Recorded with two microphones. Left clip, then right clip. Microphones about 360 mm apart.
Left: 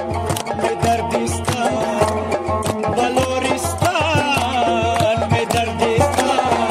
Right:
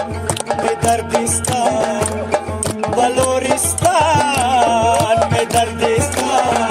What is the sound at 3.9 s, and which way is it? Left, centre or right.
Music, centre.